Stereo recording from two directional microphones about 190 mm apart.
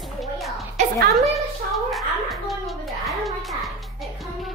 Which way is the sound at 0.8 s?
35° right (ahead or behind).